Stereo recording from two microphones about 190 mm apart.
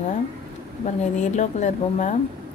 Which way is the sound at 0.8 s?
40° left (ahead or behind).